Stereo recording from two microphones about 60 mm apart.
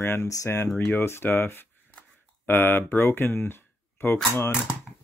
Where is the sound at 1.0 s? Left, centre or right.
Left.